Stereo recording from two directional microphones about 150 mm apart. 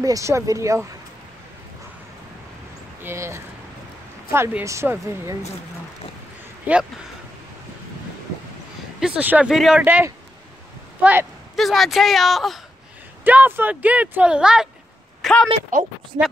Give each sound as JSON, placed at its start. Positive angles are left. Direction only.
{"t": 0.0, "sound": "speech", "side_deg": -20}
{"t": 3.0, "sound": "speech", "side_deg": -15}
{"t": 6.7, "sound": "speech", "side_deg": -10}
{"t": 9.0, "sound": "speech", "side_deg": -10}
{"t": 11.5, "sound": "speech", "side_deg": 0}
{"t": 13.2, "sound": "speech", "side_deg": -10}